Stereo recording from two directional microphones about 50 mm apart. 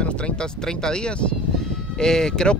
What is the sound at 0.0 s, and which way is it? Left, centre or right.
Speech, left.